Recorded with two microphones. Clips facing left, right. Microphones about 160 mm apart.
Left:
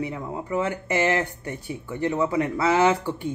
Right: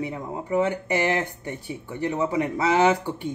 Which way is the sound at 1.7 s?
20° right (ahead or behind).